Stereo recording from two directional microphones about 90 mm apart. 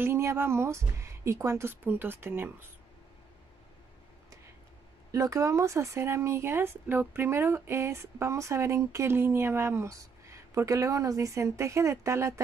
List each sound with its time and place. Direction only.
0.0 s speech: 30° right (ahead or behind)
5.1 s speech: 35° right (ahead or behind)